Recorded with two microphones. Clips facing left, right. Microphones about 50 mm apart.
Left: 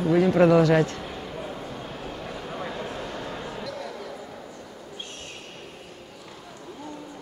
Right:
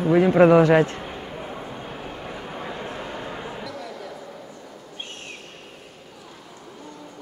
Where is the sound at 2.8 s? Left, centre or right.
Centre.